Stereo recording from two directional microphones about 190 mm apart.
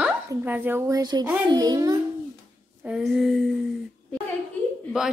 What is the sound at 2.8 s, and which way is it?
Speech, centre (ahead or behind).